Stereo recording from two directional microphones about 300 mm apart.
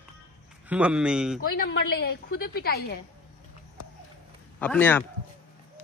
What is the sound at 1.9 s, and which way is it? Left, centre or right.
A woman's voice, left.